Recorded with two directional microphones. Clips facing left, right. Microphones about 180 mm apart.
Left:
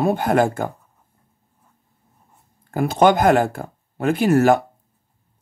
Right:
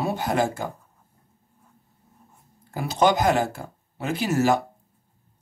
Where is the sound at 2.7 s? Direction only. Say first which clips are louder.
Left 5 dB; 55° left (ahead or behind).